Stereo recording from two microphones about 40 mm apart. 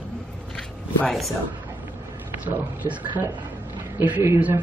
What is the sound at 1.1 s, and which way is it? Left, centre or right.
Speech, centre.